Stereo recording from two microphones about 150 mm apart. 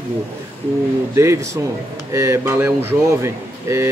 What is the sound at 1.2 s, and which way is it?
Speech, 20° right (ahead or behind).